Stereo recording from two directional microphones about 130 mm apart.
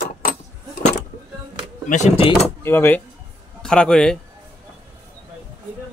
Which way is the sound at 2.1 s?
45° left (ahead or behind).